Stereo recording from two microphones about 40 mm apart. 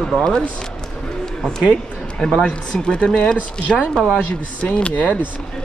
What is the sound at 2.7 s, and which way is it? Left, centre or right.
Speech, left.